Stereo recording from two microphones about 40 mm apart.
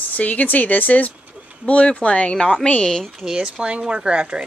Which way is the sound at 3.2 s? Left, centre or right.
Centre.